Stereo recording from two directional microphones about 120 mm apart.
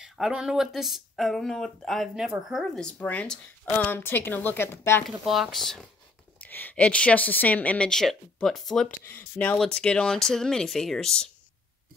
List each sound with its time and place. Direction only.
0.0 s speech: 5° right (ahead or behind)
2.8 s a woman's voice: 10° left (ahead or behind)
5.2 s speech: centre (ahead or behind)
6.4 s a woman's voice: 15° left (ahead or behind)
9.0 s a woman's voice: 15° left (ahead or behind)